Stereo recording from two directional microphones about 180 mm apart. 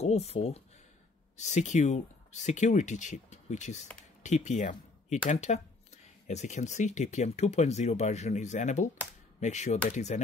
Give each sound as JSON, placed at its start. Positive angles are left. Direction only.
{"t": 0.0, "sound": "speech", "side_deg": 35}